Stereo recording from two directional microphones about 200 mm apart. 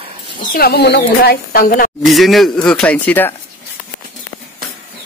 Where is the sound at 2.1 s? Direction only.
Centre (ahead or behind).